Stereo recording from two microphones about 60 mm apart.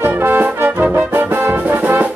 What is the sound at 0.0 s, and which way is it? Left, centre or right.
Music, right.